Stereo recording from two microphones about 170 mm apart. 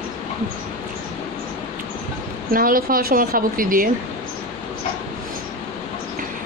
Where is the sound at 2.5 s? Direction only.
55° right (ahead or behind).